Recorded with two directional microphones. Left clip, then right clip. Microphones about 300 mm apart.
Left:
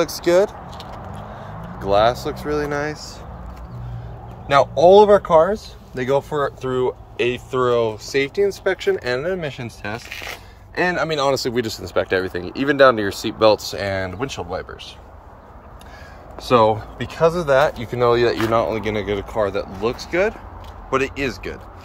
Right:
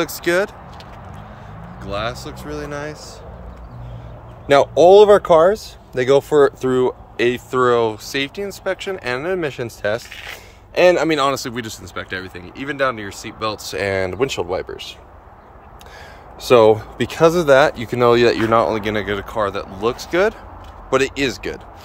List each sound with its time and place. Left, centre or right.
0.2 s speech: centre
1.8 s speech: centre
4.5 s speech: right
11.1 s speech: centre
13.7 s speech: centre
16.3 s speech: right